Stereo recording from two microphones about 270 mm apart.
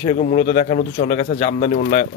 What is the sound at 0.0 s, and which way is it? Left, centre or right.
Speech, left.